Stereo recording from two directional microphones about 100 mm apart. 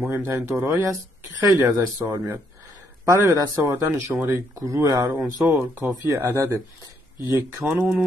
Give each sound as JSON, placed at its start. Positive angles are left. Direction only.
{"t": 0.1, "sound": "speech", "side_deg": -25}
{"t": 3.9, "sound": "speech", "side_deg": -20}
{"t": 4.6, "sound": "speech", "side_deg": -35}
{"t": 5.5, "sound": "speech", "side_deg": -20}
{"t": 6.0, "sound": "speech", "side_deg": -30}
{"t": 7.7, "sound": "speech", "side_deg": -10}